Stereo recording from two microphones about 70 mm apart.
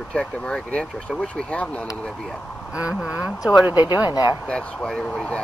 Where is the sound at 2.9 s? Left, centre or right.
Centre.